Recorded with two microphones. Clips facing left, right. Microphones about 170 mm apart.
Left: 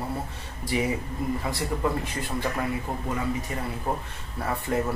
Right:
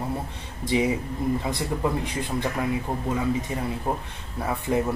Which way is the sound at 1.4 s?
20° right (ahead or behind).